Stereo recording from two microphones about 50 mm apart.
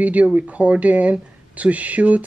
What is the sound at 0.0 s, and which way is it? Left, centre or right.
A woman's voice, right.